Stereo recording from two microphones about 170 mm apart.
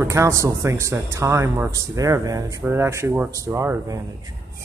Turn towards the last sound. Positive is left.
turn(degrees=-15)  # may be behind; listen again after turning